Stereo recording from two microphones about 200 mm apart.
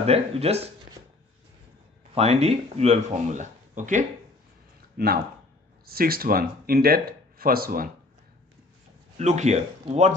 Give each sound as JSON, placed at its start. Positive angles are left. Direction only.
{"t": 0.0, "sound": "speech", "side_deg": -30}
{"t": 2.1, "sound": "speech", "side_deg": -30}
{"t": 4.9, "sound": "speech", "side_deg": -50}
{"t": 9.2, "sound": "speech", "side_deg": -35}